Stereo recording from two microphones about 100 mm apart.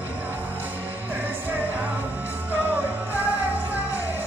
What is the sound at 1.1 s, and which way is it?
Music, 20° right (ahead or behind).